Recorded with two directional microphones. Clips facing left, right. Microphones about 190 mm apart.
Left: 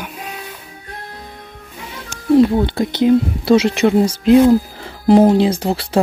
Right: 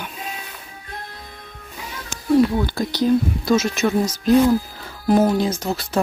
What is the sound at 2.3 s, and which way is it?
Speech, 25° left (ahead or behind).